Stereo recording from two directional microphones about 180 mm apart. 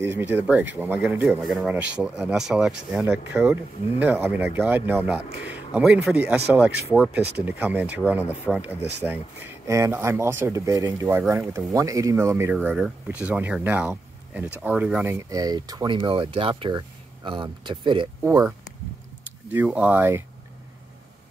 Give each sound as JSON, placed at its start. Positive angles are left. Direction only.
{"t": 0.0, "sound": "speech", "side_deg": -10}
{"t": 18.2, "sound": "speech", "side_deg": -15}
{"t": 19.5, "sound": "speech", "side_deg": -10}